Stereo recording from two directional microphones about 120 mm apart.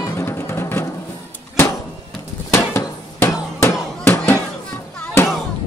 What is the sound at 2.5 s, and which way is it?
Hammer, 20° left (ahead or behind).